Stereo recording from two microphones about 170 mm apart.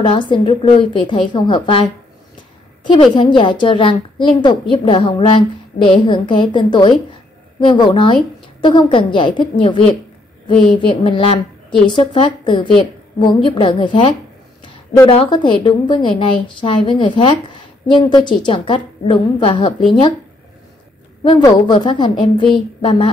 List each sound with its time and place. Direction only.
0.0 s a woman's voice: 30° left (ahead or behind)
2.9 s a woman's voice: 30° left (ahead or behind)
10.5 s a woman's voice: 5° left (ahead or behind)
10.9 s a woman's voice: 30° left (ahead or behind)
21.4 s a woman's voice: 25° left (ahead or behind)